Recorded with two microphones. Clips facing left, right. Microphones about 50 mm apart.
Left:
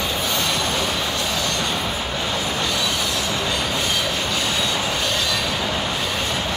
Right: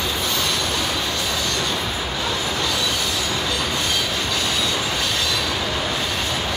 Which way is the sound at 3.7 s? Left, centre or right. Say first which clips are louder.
Left 1 dB; centre.